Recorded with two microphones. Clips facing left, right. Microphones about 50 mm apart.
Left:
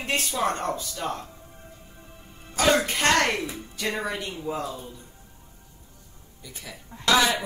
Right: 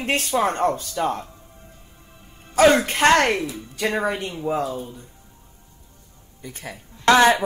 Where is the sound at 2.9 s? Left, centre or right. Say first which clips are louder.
Right 6 dB; right.